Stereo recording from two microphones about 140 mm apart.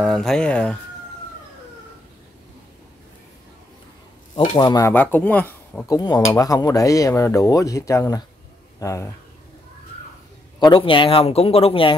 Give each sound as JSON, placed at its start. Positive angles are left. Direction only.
{"t": 0.0, "sound": "speech", "side_deg": 0}
{"t": 4.6, "sound": "speech", "side_deg": 30}
{"t": 4.8, "sound": "speech", "side_deg": 15}
{"t": 5.9, "sound": "speech", "side_deg": 30}
{"t": 10.6, "sound": "speech", "side_deg": 35}